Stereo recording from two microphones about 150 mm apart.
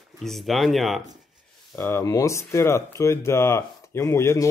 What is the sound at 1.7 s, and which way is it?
Speech, 15° left (ahead or behind).